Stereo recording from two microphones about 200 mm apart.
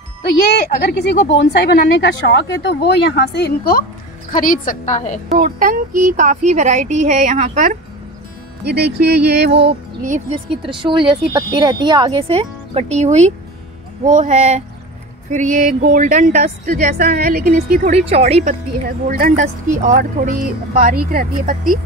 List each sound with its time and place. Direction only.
0.8 s a woman's voice: 55° left (ahead or behind); by 5.2 s 35° left (ahead or behind)
5.3 s speech: 40° right (ahead or behind)
8.6 s a sound: 55° right (ahead or behind)
9.5 s speech: 30° right (ahead or behind)
18.0 s speech: 30° right (ahead or behind)
19.0 s speech: 45° right (ahead or behind)